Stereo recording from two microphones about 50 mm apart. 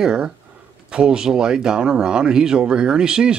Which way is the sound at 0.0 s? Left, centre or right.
Centre.